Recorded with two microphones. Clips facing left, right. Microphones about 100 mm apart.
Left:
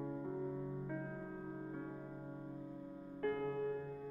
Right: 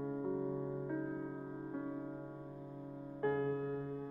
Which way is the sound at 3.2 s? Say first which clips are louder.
Right 3 dB; 25° right (ahead or behind).